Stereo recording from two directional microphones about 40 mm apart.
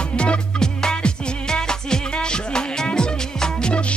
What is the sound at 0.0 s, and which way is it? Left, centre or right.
Music, left.